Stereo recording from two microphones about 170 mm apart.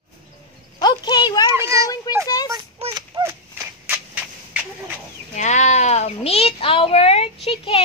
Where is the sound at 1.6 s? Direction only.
20° right (ahead or behind).